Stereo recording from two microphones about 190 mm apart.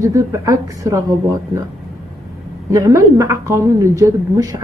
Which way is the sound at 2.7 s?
15° right (ahead or behind).